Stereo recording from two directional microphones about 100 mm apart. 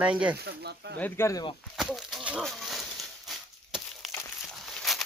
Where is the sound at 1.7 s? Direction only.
5° right (ahead or behind).